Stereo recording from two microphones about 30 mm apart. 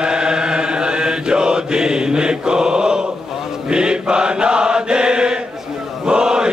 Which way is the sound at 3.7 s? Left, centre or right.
Right.